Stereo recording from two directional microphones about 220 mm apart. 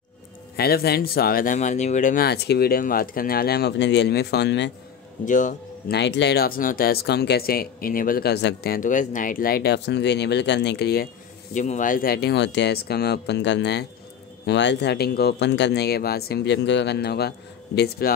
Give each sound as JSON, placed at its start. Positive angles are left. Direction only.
{"t": 0.6, "sound": "speech", "side_deg": 45}
{"t": 5.2, "sound": "a man's voice", "side_deg": 35}
{"t": 5.9, "sound": "speech", "side_deg": 50}
{"t": 11.5, "sound": "speech", "side_deg": 35}